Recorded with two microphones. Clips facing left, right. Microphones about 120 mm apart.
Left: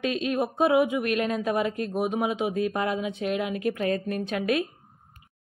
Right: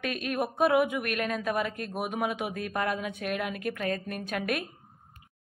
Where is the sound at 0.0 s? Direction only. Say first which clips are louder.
Left 4 dB; 25° left (ahead or behind).